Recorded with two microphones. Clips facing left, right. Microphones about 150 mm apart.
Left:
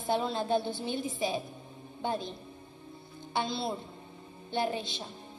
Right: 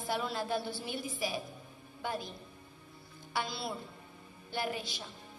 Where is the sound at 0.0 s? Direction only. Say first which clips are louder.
Left 5 dB; 25° left (ahead or behind).